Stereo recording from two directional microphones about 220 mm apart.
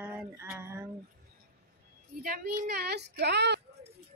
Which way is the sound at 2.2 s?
40° right (ahead or behind).